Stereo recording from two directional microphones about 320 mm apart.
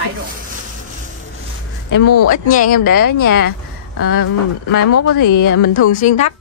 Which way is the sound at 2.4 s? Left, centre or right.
Left.